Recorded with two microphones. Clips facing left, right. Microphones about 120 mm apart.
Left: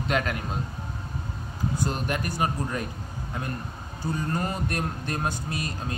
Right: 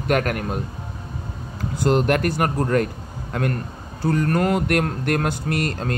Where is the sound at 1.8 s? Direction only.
85° right.